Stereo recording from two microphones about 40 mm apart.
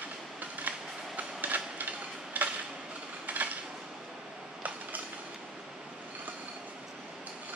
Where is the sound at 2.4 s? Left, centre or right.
Right.